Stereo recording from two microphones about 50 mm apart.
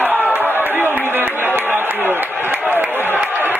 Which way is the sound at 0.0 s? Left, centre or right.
Right.